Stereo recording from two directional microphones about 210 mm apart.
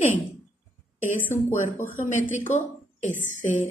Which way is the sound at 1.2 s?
10° left (ahead or behind).